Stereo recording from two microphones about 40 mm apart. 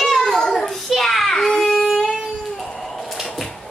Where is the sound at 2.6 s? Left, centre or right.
Centre.